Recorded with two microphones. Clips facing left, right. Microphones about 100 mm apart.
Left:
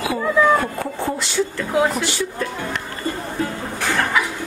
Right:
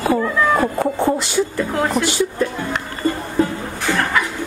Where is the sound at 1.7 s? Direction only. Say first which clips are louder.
Left 4 dB; 5° left (ahead or behind).